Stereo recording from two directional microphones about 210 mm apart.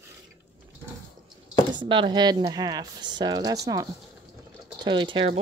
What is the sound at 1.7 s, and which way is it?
Speech, 25° right (ahead or behind).